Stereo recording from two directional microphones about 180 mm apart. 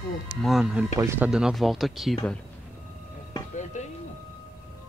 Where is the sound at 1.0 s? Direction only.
15° right (ahead or behind).